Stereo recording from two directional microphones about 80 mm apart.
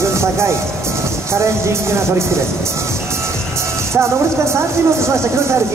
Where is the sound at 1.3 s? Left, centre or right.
Right.